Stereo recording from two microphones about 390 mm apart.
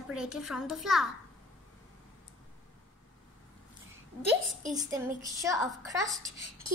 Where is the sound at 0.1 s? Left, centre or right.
Centre.